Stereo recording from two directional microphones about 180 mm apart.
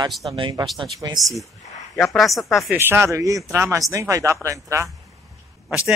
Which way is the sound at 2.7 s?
15° right (ahead or behind).